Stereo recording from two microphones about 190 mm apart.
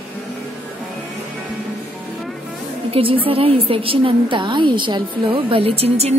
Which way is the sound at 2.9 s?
30° right (ahead or behind).